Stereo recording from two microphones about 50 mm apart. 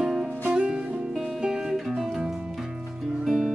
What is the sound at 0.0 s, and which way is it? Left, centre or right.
Music, centre.